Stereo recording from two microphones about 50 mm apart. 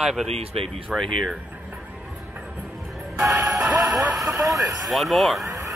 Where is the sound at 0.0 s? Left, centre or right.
Centre.